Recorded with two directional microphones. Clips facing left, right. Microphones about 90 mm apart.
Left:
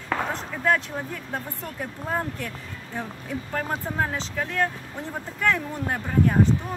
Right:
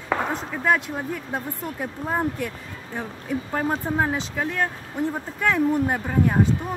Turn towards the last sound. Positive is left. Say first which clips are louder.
# right 1 dB
turn(degrees=-15)  # may be behind; listen again after turning